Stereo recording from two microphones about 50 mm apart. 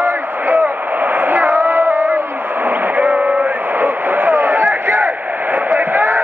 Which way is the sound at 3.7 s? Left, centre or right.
Right.